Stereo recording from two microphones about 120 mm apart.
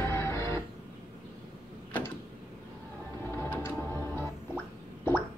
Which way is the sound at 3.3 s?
20° left (ahead or behind).